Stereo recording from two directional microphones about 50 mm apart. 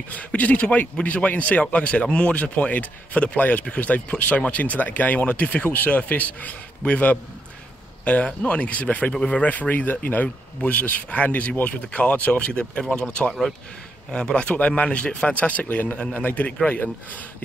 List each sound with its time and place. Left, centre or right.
0.1 s speech: left